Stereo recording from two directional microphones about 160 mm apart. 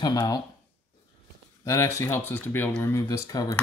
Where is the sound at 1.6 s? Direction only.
20° left (ahead or behind).